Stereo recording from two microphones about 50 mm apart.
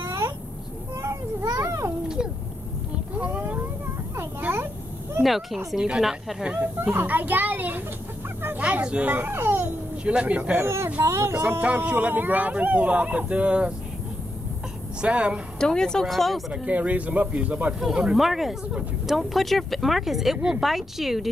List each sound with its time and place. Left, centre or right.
1.0 s children playing: right
3.3 s cat: right
5.2 s speech: centre
6.4 s speech: right
7.1 s a child's voice: right
8.5 s a sound: right
9.1 s speech: right
10.0 s speech: right
10.6 s speech: right
11.6 s speech: right
15.0 s speech: right
15.6 s speech: centre
16.6 s speech: right
17.7 s speech: centre